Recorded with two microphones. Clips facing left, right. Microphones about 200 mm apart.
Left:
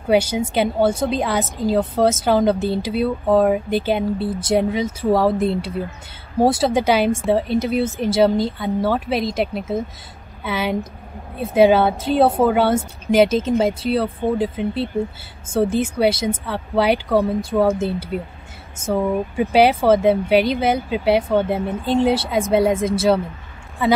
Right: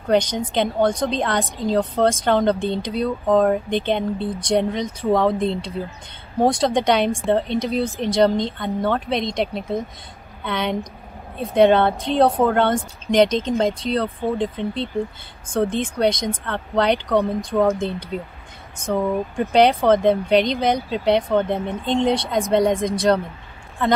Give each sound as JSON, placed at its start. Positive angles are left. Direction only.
{"t": 0.0, "sound": "a woman's voice", "side_deg": 10}